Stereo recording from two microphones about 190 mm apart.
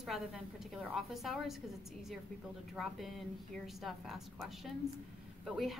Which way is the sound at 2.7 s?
Centre (ahead or behind).